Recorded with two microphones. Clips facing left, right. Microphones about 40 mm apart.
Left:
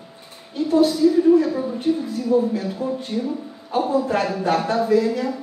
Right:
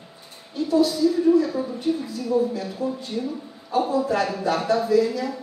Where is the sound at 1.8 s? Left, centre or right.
Left.